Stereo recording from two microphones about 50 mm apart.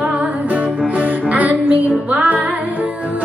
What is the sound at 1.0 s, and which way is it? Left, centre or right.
Music, right.